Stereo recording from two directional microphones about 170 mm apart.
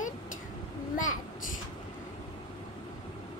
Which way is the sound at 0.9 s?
50° left (ahead or behind).